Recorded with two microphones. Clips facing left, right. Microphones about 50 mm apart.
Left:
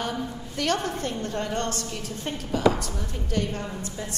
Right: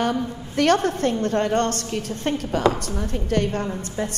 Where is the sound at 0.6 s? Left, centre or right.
Right.